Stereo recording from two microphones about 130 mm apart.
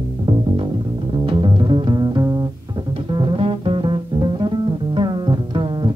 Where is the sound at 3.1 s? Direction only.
45° right (ahead or behind).